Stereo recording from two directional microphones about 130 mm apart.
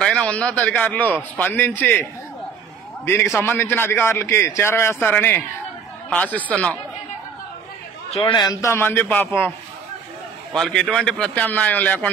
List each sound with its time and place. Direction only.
0.0 s a man's voice: 5° left (ahead or behind)
3.3 s a man's voice: 15° left (ahead or behind)
8.1 s a man's voice: 40° left (ahead or behind)
8.5 s a man's voice: 25° left (ahead or behind)
10.5 s a man's voice: 5° left (ahead or behind)